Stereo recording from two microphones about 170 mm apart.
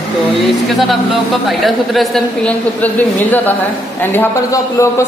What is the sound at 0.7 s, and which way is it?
A woman's voice, centre (ahead or behind).